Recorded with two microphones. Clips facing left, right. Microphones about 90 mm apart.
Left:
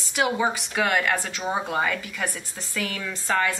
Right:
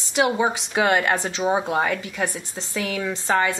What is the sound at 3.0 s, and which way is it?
Speech, 20° right (ahead or behind).